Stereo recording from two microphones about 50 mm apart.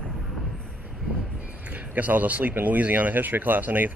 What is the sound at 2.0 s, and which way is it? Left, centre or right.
Speech, right.